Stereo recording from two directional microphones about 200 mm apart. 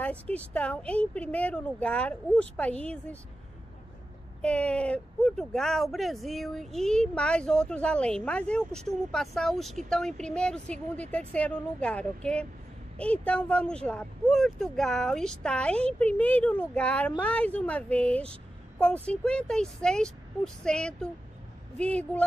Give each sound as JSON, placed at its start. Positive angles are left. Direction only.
{"t": 0.0, "sound": "speech", "side_deg": 5}
{"t": 4.4, "sound": "speech", "side_deg": 5}